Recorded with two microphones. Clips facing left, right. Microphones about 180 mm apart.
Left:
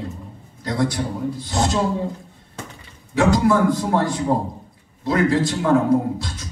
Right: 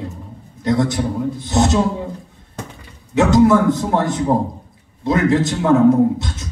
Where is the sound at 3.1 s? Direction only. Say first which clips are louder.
Right 4 dB; 20° right (ahead or behind).